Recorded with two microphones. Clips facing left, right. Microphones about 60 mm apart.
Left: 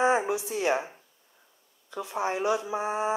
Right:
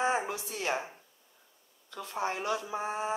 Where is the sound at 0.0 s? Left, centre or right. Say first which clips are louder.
Left 6 dB; centre.